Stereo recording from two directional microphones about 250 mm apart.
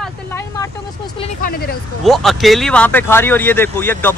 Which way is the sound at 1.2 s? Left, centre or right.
Left.